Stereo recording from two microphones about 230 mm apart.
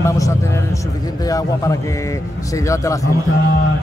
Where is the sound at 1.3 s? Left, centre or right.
Centre.